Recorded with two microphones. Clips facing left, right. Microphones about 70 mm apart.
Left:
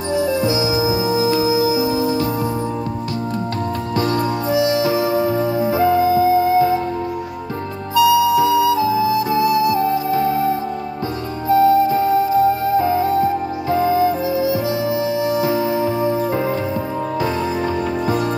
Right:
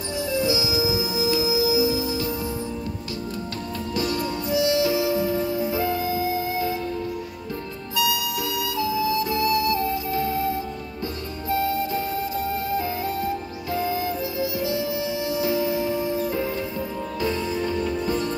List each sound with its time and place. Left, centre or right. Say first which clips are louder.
0.1 s music: left 6 dB; left
3.9 s music: left 6 dB; left
7.9 s flute: left 12 dB; left
11.4 s music: left 11 dB; left